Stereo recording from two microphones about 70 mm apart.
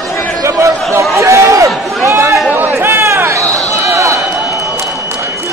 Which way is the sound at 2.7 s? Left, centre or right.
Right.